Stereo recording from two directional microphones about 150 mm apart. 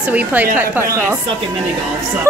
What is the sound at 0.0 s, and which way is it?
A man's voice, 10° right (ahead or behind).